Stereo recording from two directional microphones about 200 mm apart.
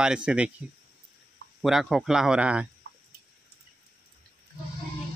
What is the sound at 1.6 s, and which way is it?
Speech, centre (ahead or behind).